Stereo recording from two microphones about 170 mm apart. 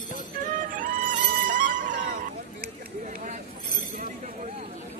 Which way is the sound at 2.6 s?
50° right (ahead or behind).